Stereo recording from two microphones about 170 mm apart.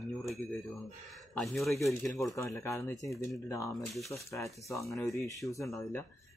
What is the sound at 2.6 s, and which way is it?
Speech, 20° left (ahead or behind).